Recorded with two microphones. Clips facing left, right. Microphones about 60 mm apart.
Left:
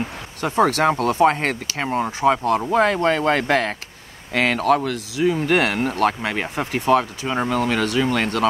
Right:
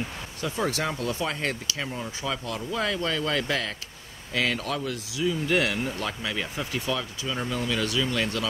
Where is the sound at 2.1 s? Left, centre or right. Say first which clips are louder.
Left 13 dB; left.